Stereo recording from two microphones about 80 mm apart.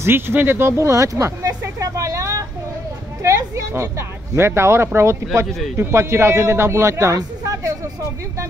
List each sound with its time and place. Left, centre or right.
0.0 s speech: right
1.6 s vehicle: right
3.2 s a woman's voice: right